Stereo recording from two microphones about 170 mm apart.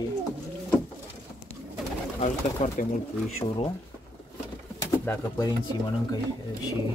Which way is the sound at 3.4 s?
25° left (ahead or behind).